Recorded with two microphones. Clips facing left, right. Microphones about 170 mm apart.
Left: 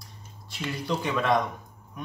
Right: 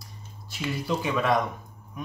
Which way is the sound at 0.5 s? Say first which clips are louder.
Right 1 dB; 5° right (ahead or behind).